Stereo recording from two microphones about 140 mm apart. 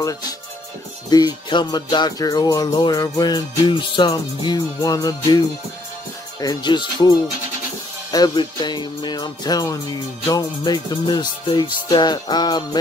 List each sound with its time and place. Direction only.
1.1 s music: 30° left (ahead or behind)
6.4 s music: 30° left (ahead or behind)